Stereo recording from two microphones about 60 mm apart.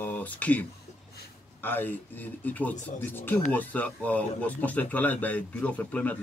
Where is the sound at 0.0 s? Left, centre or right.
Left.